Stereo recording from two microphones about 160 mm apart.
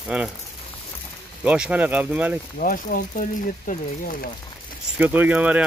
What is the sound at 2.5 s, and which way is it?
Speech, 60° left (ahead or behind).